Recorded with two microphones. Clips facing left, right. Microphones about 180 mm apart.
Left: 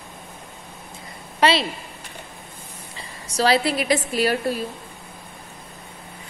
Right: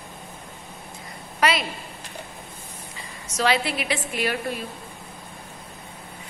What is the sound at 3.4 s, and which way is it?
A woman's voice, 35° left (ahead or behind).